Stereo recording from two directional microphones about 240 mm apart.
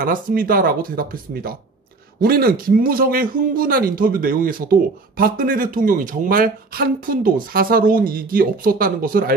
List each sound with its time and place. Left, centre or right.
0.0 s speech: right